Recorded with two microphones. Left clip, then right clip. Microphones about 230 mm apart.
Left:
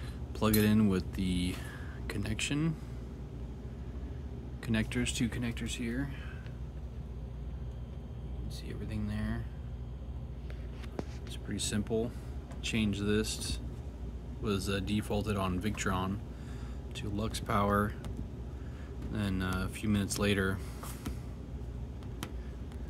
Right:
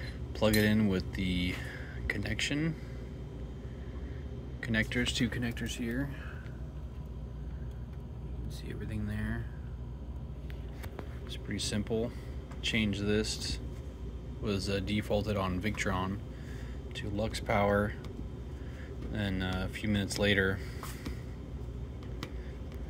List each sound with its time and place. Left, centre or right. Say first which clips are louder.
0.4 s speech: right 1 dB; centre
4.6 s speech: right 3 dB; left; by 6.1 s centre
8.6 s vehicle: right 1 dB; centre
11.0 s a sound: left 3 dB; centre
12.6 s speech: right 2 dB; centre
19.1 s speech: even; centre